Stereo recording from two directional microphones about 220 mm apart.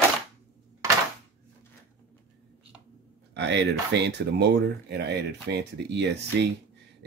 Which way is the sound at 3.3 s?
50° right (ahead or behind).